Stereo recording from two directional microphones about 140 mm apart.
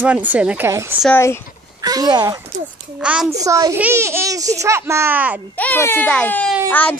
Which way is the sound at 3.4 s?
25° right (ahead or behind).